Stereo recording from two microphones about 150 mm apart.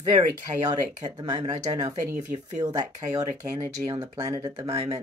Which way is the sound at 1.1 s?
25° right (ahead or behind).